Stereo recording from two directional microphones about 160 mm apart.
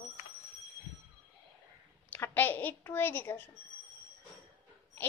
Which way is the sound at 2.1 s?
10° left (ahead or behind).